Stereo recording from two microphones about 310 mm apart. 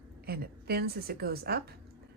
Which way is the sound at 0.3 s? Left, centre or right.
Right.